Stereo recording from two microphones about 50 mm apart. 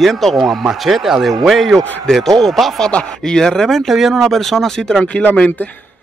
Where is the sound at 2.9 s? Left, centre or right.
Centre.